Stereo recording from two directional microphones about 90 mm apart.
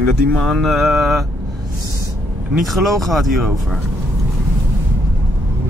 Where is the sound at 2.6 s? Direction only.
Centre (ahead or behind).